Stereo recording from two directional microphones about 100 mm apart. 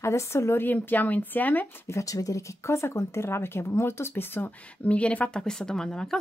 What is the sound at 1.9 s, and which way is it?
Speech, 35° left (ahead or behind).